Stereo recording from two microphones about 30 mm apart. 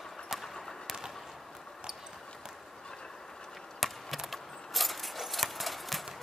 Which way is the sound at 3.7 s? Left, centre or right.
Centre.